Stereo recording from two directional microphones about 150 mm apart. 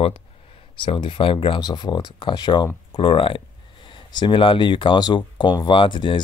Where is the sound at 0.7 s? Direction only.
35° left (ahead or behind).